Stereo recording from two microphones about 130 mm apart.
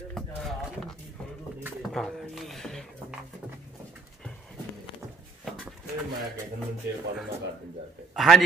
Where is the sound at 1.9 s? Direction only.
5° left (ahead or behind).